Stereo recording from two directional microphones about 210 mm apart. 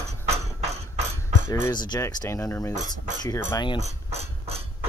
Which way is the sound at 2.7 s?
35° right (ahead or behind).